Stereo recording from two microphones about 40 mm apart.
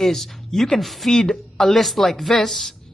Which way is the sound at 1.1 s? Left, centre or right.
Centre.